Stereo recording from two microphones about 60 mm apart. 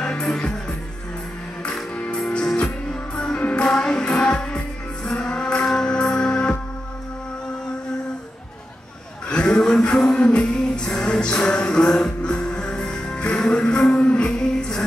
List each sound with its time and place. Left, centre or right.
0.0 s music: centre
2.0 s music: centre
5.0 s music: centre
5.3 s a sound: centre
5.7 s music: centre
9.3 s a sound: centre
9.6 s music: centre